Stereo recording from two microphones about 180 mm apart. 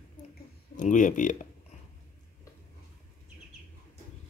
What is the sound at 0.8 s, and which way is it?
Speech, 45° left (ahead or behind).